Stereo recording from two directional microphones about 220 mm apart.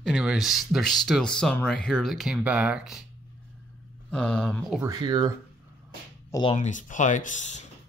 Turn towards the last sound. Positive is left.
turn(degrees=30)  # may be behind; listen again after turning